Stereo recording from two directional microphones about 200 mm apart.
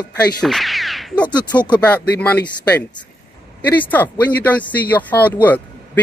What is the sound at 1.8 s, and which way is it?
Speech, 10° left (ahead or behind).